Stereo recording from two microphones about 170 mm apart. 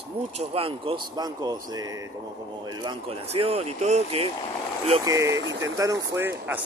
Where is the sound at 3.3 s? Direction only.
35° right (ahead or behind).